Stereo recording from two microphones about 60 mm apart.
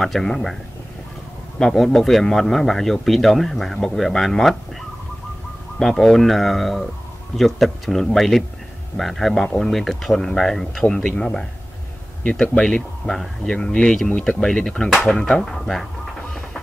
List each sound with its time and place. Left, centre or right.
0.0 s speech: centre
1.6 s speech: centre
5.8 s speech: centre
16.2 s music: centre